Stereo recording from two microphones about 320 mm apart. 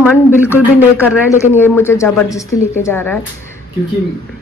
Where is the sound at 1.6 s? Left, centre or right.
Centre.